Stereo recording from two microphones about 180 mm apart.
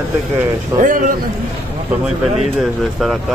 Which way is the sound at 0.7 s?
50° right (ahead or behind).